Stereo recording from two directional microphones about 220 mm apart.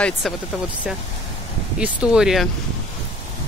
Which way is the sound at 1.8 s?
5° right (ahead or behind).